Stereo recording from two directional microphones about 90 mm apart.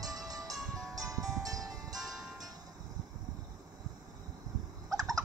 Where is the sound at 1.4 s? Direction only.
45° right (ahead or behind).